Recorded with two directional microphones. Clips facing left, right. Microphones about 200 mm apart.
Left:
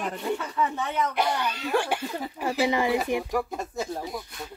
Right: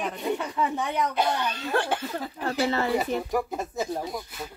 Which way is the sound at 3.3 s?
Centre (ahead or behind).